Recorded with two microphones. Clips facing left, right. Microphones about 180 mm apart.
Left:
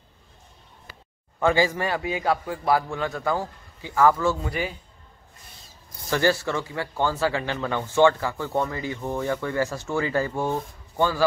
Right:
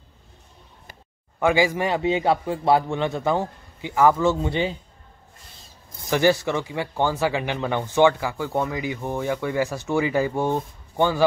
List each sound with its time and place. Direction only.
1.4 s a man's voice: 15° right (ahead or behind)
5.9 s speech: 15° right (ahead or behind)